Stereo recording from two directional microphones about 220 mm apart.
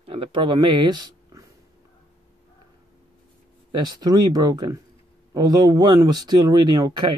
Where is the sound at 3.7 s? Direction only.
20° right (ahead or behind).